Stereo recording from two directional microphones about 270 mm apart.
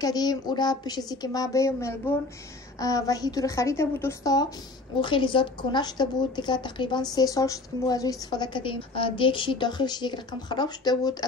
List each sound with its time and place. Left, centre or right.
0.0 s a woman's voice: centre